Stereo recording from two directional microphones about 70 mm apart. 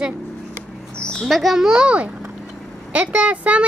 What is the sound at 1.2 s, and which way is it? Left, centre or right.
A child's voice, centre.